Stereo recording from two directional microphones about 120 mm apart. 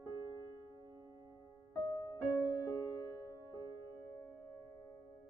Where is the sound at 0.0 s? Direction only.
30° right (ahead or behind).